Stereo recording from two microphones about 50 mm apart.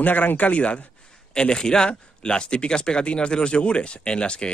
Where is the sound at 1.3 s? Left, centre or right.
Centre.